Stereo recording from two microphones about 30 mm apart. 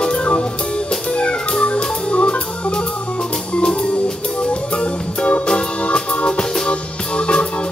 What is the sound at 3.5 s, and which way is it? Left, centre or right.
Music, left.